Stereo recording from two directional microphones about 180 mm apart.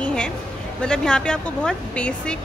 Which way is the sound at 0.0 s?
5° left (ahead or behind).